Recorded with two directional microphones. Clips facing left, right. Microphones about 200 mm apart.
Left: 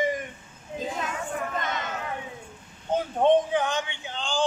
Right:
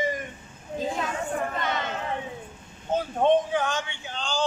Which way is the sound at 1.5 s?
45° left (ahead or behind).